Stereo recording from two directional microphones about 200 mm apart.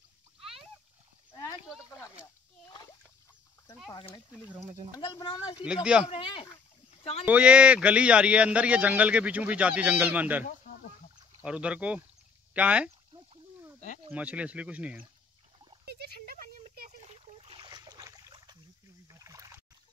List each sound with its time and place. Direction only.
0.4 s splash: centre (ahead or behind)
4.5 s speech: 10° right (ahead or behind)
4.9 s speech: 20° left (ahead or behind)
5.6 s speech: 5° right (ahead or behind)
6.0 s speech: 25° left (ahead or behind)
7.2 s speech: 5° right (ahead or behind)
11.4 s speech: 5° right (ahead or behind)
14.1 s speech: 5° right (ahead or behind)
15.8 s a sound: 55° right (ahead or behind)
17.4 s splash: 25° right (ahead or behind)
19.0 s a sound: 15° right (ahead or behind)